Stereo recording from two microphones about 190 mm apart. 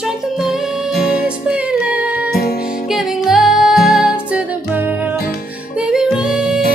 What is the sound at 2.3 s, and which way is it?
Music, 55° left (ahead or behind).